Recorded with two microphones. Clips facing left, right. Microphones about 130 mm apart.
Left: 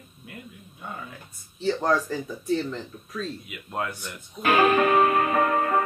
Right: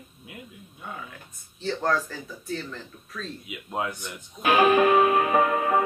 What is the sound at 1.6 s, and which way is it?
Speech, 15° left (ahead or behind).